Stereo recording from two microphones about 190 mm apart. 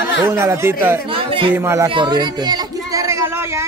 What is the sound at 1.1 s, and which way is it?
Speech, 30° right (ahead or behind).